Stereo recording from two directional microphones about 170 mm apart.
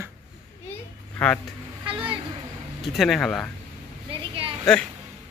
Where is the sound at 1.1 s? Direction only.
5° left (ahead or behind).